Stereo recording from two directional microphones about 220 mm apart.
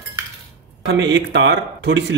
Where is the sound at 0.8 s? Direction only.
55° right (ahead or behind).